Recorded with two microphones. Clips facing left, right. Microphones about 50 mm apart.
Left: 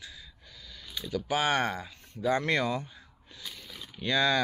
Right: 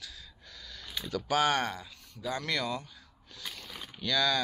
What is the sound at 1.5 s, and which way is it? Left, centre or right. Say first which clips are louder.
Speech: left 2 dB; left.